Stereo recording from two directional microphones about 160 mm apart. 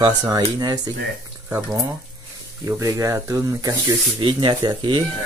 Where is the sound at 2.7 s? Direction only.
20° right (ahead or behind).